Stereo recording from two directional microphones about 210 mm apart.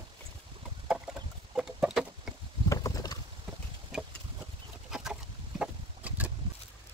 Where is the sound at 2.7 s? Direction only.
15° left (ahead or behind).